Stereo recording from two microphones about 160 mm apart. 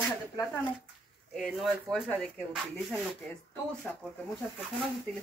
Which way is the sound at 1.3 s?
Centre (ahead or behind).